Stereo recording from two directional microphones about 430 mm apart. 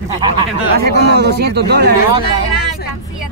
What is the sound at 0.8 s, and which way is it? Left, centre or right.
Speech, right.